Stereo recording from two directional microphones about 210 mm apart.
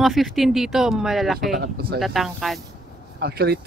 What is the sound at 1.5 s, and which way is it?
Speech, 45° right (ahead or behind).